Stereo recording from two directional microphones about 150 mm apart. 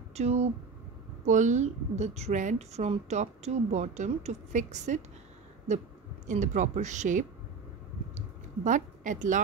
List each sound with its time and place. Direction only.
0.1 s speech: 45° right (ahead or behind)
1.2 s a woman's voice: 55° right (ahead or behind)
6.2 s speech: 55° right (ahead or behind)
8.6 s a woman's voice: 55° right (ahead or behind)